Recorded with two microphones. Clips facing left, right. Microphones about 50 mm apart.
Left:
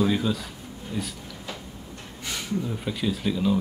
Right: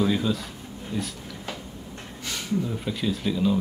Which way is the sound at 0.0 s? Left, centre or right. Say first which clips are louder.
Even; centre.